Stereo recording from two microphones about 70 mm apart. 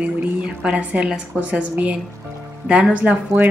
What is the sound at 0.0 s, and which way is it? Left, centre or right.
A woman's voice, centre.